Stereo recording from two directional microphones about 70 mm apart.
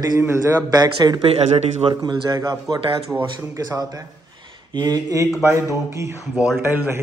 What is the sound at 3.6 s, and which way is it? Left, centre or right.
Speech, right.